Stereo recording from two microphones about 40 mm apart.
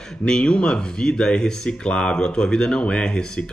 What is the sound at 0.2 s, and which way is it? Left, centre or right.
Speech, left.